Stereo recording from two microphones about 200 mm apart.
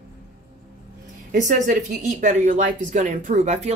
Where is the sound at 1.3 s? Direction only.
40° right (ahead or behind).